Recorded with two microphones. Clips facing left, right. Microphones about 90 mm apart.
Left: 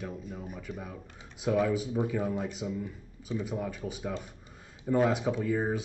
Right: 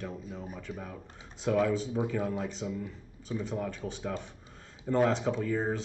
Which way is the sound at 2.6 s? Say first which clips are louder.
Left 1 dB; centre (ahead or behind).